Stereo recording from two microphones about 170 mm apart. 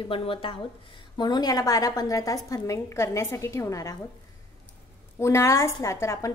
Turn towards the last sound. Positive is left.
turn(degrees=15)  # may be behind; listen again after turning